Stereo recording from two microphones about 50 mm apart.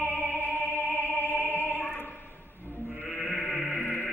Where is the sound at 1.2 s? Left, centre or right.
Right.